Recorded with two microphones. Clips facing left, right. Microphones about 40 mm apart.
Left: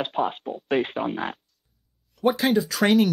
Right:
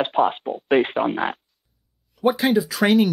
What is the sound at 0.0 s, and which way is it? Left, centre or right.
Speech, right.